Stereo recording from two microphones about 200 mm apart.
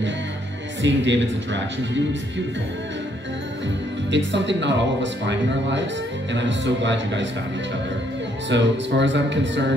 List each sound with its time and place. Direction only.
0.8 s speech: 65° right (ahead or behind)
4.1 s speech: 65° right (ahead or behind)
8.5 s speech: 65° right (ahead or behind)